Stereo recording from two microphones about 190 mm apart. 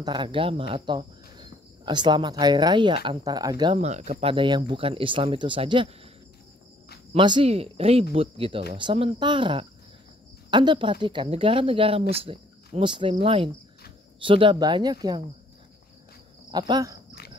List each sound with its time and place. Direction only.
0.0 s speech: 25° right (ahead or behind)
3.8 s speech: 35° right (ahead or behind)
7.1 s speech: 25° right (ahead or behind)
16.4 s cricket: 25° right (ahead or behind)